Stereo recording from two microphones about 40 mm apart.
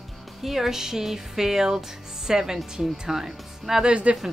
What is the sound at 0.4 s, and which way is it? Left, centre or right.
Speech, centre.